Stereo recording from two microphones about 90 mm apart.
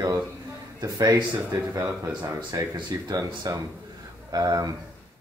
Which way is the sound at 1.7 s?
35° right (ahead or behind).